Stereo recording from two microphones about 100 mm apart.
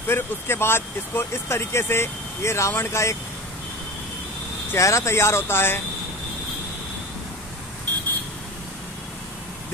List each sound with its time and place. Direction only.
0.1 s speech: 25° left (ahead or behind)
4.7 s speech: 30° left (ahead or behind)